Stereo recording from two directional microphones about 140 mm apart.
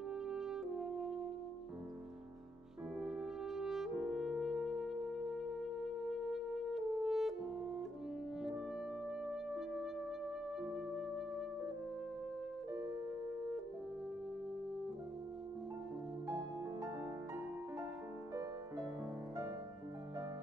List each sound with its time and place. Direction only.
0.3 s music: 5° right (ahead or behind)
3.0 s music: 5° right (ahead or behind)
9.2 s music: 5° right (ahead or behind)
16.3 s music: 20° right (ahead or behind)